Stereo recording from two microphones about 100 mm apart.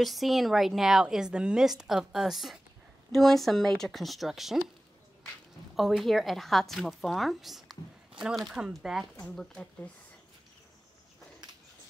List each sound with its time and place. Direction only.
0.0 s a woman's voice: centre (ahead or behind)
5.8 s a woman's voice: centre (ahead or behind)
9.2 s speech: 5° left (ahead or behind)